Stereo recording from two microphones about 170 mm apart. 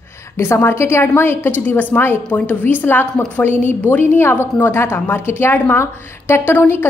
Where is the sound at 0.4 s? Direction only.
15° left (ahead or behind).